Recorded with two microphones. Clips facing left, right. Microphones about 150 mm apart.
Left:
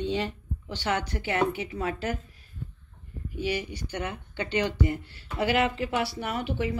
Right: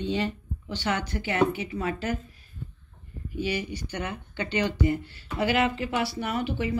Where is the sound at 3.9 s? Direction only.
20° left (ahead or behind).